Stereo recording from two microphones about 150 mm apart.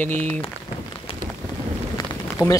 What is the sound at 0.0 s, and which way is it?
Speech, 10° left (ahead or behind).